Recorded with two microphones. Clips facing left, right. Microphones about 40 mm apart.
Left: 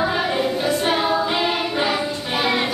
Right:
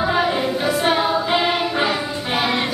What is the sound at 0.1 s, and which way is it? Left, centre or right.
Music, centre.